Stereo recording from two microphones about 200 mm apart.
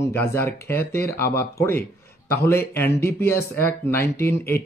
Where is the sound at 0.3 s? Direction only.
15° left (ahead or behind).